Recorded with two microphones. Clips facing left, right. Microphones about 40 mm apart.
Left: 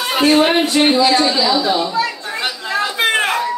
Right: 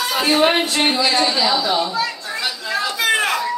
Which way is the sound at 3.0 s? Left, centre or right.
Left.